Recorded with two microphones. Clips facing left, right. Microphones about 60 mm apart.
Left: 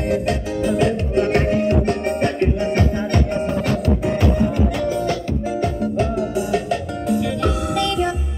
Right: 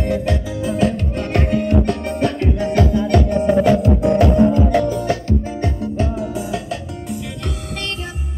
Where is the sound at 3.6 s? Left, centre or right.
Left.